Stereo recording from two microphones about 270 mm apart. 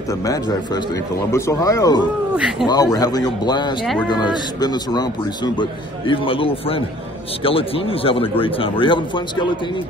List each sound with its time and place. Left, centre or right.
1.3 s a man's voice: centre
2.3 s speech: centre
2.7 s a man's voice: centre